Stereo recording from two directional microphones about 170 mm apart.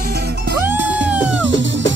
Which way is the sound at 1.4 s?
90° right.